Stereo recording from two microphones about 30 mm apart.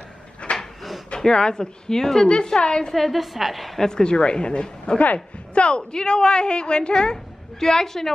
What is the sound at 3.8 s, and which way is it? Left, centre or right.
Speech, left.